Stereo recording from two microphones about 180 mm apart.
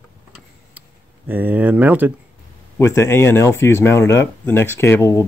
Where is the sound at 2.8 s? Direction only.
15° left (ahead or behind).